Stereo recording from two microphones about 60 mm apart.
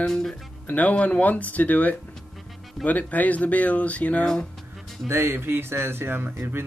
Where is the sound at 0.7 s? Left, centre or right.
Left.